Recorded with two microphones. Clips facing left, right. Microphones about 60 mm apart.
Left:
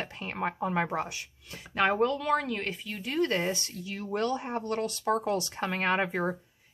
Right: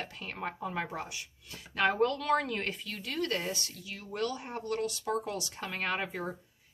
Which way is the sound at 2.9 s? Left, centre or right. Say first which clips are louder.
Left 7 dB; left.